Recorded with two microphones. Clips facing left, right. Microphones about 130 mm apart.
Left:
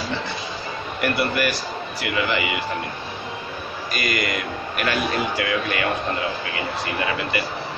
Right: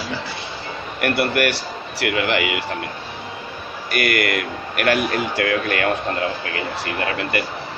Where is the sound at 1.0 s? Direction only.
70° right (ahead or behind).